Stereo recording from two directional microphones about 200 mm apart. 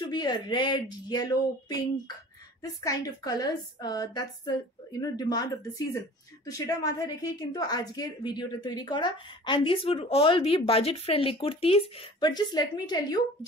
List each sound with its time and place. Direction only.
0.0 s a woman's voice: 20° left (ahead or behind)